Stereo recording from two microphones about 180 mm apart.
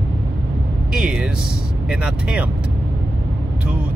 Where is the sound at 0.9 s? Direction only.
5° right (ahead or behind).